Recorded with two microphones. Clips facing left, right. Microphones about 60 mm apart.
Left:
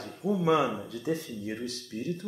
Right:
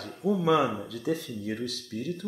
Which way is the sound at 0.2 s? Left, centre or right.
Centre.